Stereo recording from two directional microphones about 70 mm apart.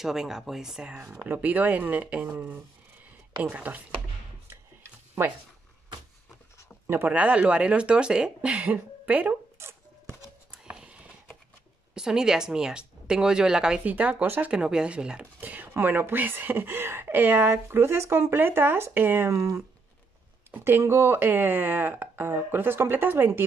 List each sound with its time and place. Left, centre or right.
0.0 s speech: centre; by 3.8 s right
5.2 s speech: right
6.9 s speech: right
7.2 s speech: centre
9.6 s a sound: right
10.5 s clip-clop: centre
11.9 s speech: centre
13.8 s speech: right
14.5 s speech: centre
15.4 s a sound: right
15.7 s speech: right
19.3 s speech: right
20.5 s speech: right